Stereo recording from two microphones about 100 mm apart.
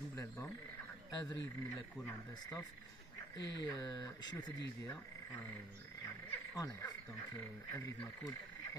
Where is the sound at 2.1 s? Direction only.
40° left (ahead or behind).